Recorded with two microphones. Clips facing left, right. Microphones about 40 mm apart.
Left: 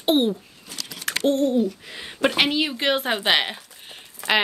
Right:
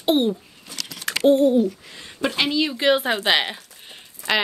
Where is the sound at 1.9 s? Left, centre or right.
Left.